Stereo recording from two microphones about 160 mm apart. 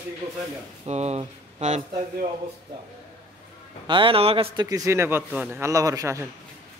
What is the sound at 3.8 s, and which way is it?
Speech, 30° right (ahead or behind).